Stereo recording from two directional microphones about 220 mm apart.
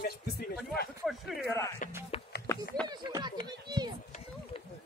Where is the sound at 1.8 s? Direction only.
35° left (ahead or behind).